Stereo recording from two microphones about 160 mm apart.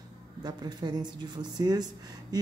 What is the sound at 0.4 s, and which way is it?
A woman's voice, 25° right (ahead or behind).